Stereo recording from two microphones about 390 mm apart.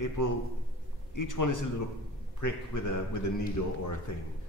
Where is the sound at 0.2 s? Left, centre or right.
Left.